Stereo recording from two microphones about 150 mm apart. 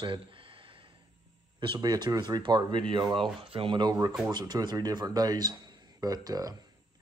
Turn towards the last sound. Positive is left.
turn(degrees=-25)  # may be behind; listen again after turning